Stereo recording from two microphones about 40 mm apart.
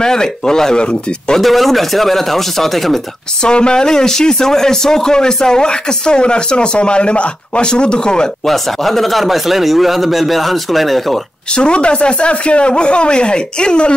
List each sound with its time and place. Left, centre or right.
0.0 s speech: centre
1.4 s speech: centre
3.4 s speech: left
8.5 s speech: centre
11.5 s speech: left